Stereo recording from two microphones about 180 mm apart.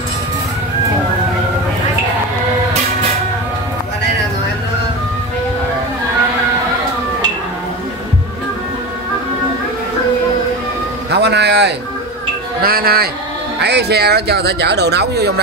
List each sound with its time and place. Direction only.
11.1 s a sound: 70° right (ahead or behind)
12.6 s music: 55° right (ahead or behind)
13.6 s speech: 65° right (ahead or behind)